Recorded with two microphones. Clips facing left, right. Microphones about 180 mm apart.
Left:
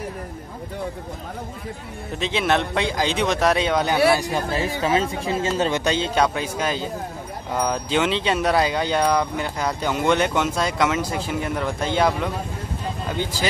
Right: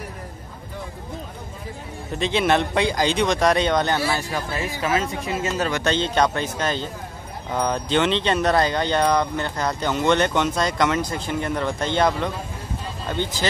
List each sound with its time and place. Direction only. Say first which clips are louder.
2.1 s a man's voice: right 2 dB; centre (ahead or behind)
4.5 s speech: left 2 dB; 30° left (ahead or behind)
5.9 s speech: even; 5° left (ahead or behind)